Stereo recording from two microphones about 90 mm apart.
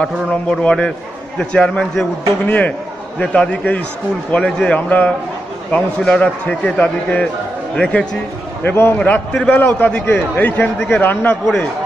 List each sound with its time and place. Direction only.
0.0 s a man's voice: 10° left (ahead or behind)
8.6 s a man's voice: 25° left (ahead or behind)
8.9 s a man's voice: 15° left (ahead or behind)